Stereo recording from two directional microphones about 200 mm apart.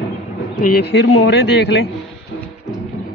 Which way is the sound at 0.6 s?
50° left (ahead or behind).